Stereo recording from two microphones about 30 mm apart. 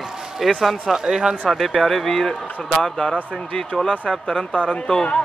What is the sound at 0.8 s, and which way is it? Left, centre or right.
Speech, right.